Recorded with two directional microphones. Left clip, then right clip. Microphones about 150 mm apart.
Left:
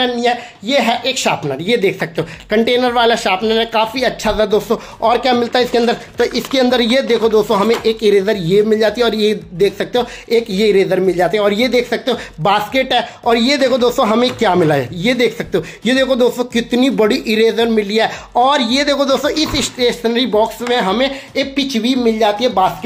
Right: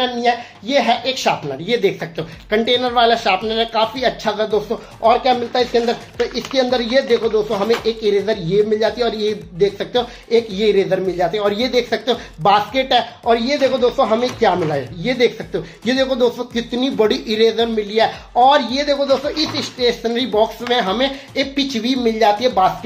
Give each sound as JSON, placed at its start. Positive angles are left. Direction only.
{"t": 0.0, "sound": "speech", "side_deg": 30}